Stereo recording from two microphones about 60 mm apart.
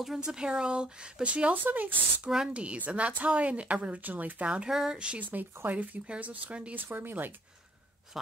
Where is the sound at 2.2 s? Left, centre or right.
Centre.